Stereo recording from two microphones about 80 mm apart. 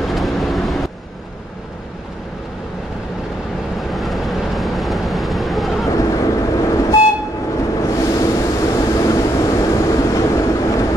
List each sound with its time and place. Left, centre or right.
0.1 s vehicle: centre
3.9 s vehicle: centre
5.9 s vehicle: left